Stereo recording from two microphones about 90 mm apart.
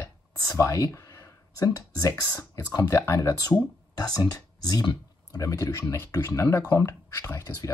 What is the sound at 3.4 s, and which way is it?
Speech, 45° left (ahead or behind).